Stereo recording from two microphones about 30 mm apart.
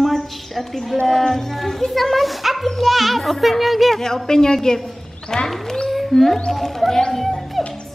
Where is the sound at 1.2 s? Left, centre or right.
Centre.